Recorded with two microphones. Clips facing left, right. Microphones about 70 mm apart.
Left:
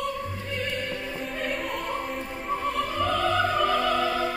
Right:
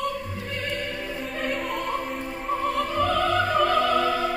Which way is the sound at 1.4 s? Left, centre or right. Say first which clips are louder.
Right 3 dB; centre.